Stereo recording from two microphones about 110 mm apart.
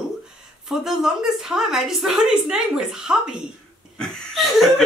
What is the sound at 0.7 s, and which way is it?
A woman's voice, centre (ahead or behind).